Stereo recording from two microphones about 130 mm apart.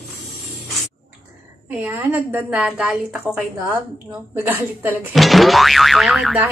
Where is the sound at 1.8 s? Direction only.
15° right (ahead or behind).